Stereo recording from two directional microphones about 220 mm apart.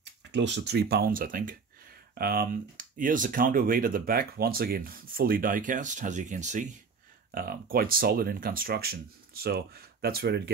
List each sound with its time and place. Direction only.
0.3 s speech: 55° right (ahead or behind)